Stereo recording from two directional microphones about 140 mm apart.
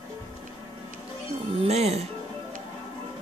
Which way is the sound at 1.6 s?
50° right (ahead or behind).